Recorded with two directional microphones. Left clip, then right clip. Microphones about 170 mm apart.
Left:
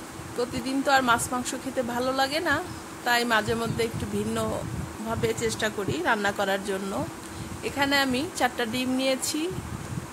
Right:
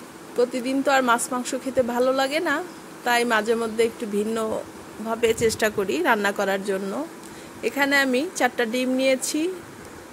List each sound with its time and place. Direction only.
0.4 s speech: 15° right (ahead or behind)